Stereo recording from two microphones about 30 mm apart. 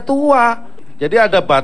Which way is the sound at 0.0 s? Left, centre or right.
Centre.